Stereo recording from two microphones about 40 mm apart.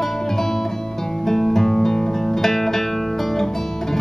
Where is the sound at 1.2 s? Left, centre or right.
Centre.